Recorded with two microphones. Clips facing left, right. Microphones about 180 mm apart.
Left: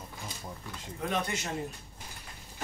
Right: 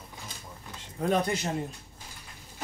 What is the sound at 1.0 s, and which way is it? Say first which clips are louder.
Speech: right 6 dB; 35° right (ahead or behind).